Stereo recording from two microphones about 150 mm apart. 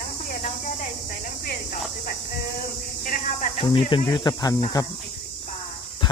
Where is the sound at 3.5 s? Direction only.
35° left (ahead or behind).